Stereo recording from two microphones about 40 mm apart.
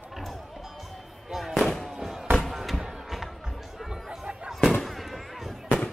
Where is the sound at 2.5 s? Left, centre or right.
Centre.